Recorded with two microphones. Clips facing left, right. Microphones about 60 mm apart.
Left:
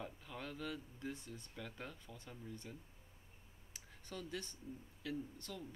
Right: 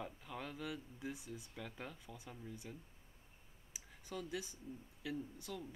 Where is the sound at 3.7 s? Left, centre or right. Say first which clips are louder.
Right 3 dB; centre.